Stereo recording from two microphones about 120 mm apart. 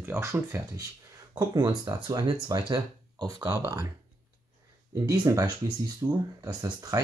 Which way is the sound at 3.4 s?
20° right (ahead or behind).